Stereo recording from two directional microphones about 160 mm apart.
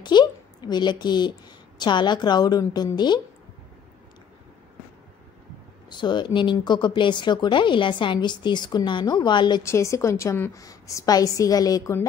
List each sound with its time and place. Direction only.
0.0 s a sound: 25° left (ahead or behind)
1.8 s speech: 30° left (ahead or behind)
5.9 s speech: 30° left (ahead or behind)
9.6 s speech: 20° left (ahead or behind)